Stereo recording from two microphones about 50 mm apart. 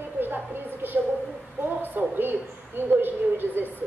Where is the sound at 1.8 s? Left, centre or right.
Right.